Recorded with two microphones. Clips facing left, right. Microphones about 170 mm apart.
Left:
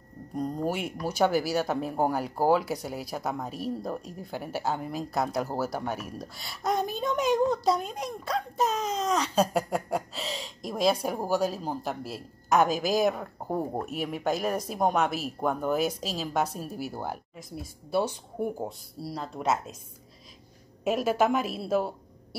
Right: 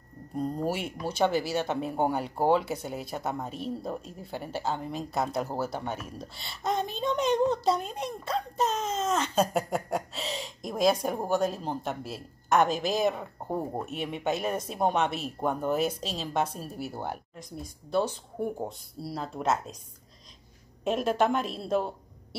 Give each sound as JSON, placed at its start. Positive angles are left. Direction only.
{"t": 0.4, "sound": "speech", "side_deg": 5}
{"t": 6.2, "sound": "speech", "side_deg": -25}
{"t": 6.5, "sound": "speech", "side_deg": 5}
{"t": 20.8, "sound": "speech", "side_deg": 5}